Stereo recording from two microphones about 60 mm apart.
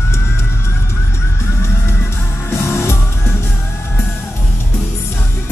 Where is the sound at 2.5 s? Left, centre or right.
Left.